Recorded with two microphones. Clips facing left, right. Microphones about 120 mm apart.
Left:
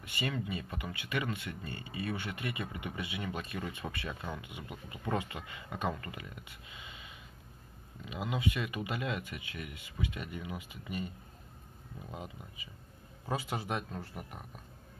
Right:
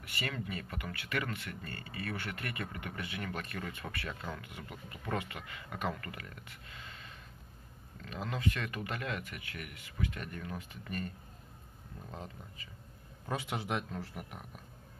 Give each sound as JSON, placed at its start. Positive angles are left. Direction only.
{"t": 0.0, "sound": "speech", "side_deg": 20}
{"t": 13.3, "sound": "speech", "side_deg": 0}